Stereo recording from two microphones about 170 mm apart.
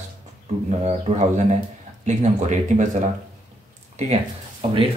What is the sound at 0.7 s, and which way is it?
Speech, 40° right (ahead or behind).